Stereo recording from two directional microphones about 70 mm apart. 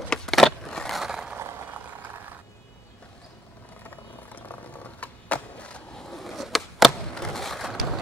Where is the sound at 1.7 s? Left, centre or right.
Right.